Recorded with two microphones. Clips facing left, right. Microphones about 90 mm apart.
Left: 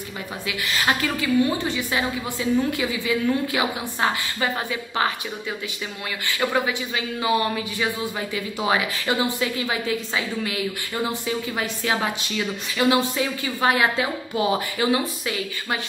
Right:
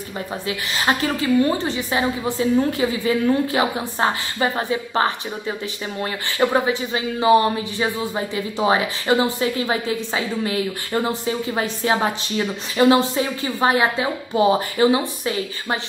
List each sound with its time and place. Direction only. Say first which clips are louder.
0.5 s speech: right 1 dB; 30° right (ahead or behind)
6.3 s speech: right 5 dB; 35° right (ahead or behind)